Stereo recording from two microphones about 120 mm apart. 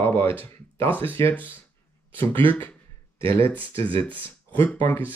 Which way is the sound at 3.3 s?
15° left (ahead or behind).